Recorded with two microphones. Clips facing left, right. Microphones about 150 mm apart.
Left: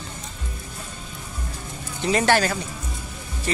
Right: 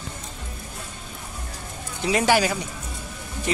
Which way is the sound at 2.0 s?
5° right (ahead or behind).